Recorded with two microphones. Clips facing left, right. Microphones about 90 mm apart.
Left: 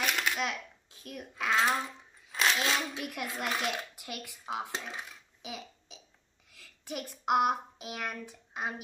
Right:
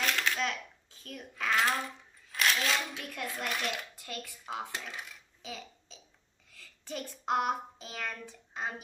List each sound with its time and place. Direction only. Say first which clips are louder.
0.0 s coin: even; 15° left (ahead or behind)
1.0 s a child's voice: left 1 dB; 10° left (ahead or behind)
4.7 s a child's voice: left 2 dB; 25° left (ahead or behind)
6.5 s child singing: left 1 dB; 10° left (ahead or behind)